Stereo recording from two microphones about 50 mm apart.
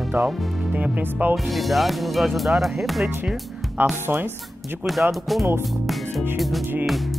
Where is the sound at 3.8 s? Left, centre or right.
Right.